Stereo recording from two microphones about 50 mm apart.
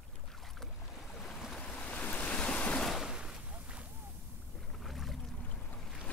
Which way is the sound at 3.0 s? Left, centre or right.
Centre.